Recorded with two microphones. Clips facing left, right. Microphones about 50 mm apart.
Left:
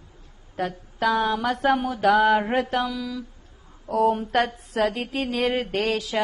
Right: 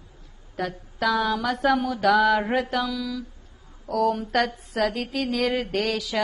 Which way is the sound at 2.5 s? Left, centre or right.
Left.